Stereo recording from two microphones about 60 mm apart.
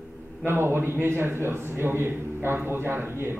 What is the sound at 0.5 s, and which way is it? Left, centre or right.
A man's voice, right.